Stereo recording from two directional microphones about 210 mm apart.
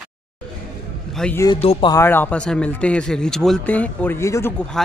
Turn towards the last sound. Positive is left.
turn(degrees=10)  # may be behind; listen again after turning